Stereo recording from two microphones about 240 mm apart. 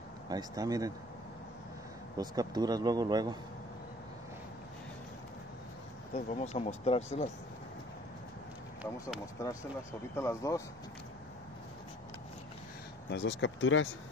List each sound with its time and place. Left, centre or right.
0.3 s speech: centre
2.1 s speech: centre
6.1 s speech: left
10.1 s speech: centre
13.1 s speech: left